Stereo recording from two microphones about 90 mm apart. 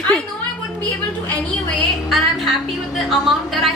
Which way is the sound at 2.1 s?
Centre (ahead or behind).